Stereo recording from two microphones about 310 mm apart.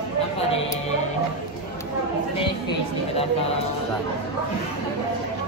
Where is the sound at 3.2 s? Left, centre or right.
Centre.